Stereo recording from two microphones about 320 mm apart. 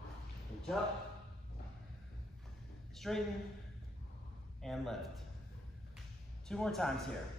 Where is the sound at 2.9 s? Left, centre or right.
Centre.